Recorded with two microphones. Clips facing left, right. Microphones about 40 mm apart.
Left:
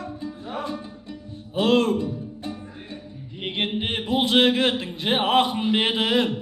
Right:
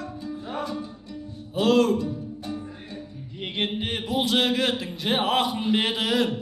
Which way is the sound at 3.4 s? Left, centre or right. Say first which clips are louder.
Left 2 dB; left.